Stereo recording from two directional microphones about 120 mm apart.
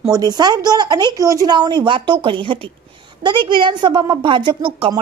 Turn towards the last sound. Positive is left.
turn(degrees=-45)  # may be behind; listen again after turning